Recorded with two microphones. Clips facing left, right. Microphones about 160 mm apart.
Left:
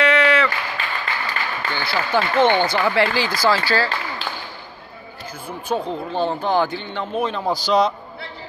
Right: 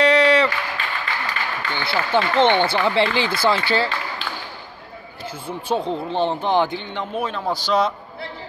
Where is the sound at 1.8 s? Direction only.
25° right (ahead or behind).